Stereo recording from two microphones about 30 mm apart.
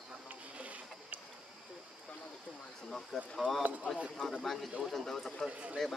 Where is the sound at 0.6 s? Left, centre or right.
Right.